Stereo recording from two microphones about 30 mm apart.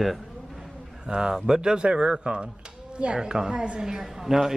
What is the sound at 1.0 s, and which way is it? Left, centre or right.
A man's voice, right.